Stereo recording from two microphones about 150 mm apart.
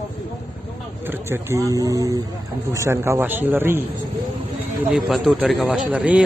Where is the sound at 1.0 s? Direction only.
15° right (ahead or behind).